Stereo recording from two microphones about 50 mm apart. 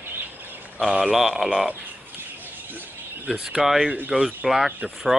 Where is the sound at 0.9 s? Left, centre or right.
Centre.